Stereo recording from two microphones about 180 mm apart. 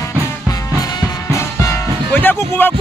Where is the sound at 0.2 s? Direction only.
20° left (ahead or behind).